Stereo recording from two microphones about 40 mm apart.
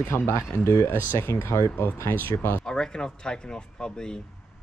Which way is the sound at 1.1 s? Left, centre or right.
Left.